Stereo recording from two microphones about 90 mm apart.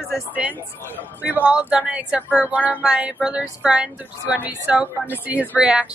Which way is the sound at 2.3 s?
20° right (ahead or behind).